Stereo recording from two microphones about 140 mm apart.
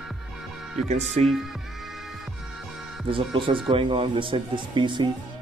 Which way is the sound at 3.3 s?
35° right (ahead or behind).